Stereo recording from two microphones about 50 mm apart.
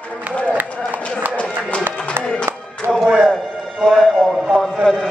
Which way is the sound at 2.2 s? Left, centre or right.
Right.